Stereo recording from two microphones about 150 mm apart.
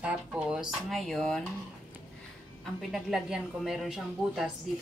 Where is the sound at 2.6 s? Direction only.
Centre (ahead or behind).